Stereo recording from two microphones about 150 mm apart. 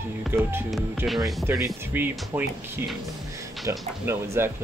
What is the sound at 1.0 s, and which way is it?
Speech, centre (ahead or behind).